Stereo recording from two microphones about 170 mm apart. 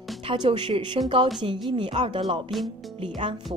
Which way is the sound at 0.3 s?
30° right (ahead or behind).